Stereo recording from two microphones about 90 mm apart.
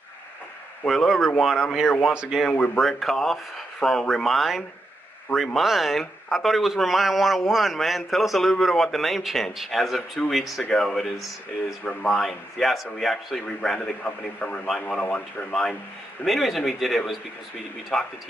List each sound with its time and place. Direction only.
0.8 s a man's voice: centre (ahead or behind)
11.8 s a man's voice: 10° left (ahead or behind)
16.3 s a man's voice: centre (ahead or behind)